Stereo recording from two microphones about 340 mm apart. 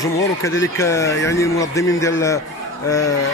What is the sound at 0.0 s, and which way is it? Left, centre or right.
Speech, centre.